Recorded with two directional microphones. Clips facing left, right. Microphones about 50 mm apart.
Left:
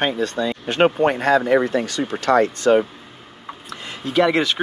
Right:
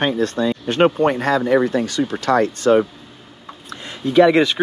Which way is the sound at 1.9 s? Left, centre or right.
Left.